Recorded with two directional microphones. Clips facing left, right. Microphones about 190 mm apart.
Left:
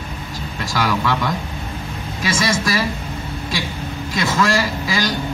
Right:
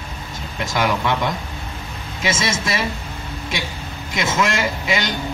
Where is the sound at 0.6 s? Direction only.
20° right (ahead or behind).